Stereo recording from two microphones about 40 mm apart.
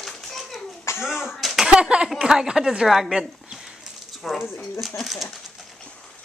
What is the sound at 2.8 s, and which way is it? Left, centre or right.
Speech, centre.